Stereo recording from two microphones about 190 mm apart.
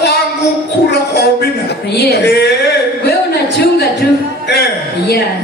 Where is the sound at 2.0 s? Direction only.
55° left (ahead or behind).